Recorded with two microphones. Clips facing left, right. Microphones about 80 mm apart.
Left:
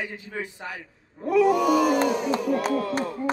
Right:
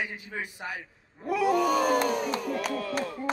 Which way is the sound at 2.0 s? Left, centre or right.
Left.